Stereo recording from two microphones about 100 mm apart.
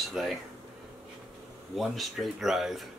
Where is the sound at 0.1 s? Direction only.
Centre (ahead or behind).